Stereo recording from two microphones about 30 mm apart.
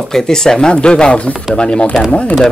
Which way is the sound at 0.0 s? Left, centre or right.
Centre.